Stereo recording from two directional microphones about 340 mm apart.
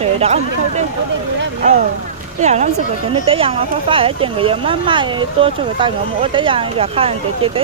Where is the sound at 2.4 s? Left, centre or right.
Centre.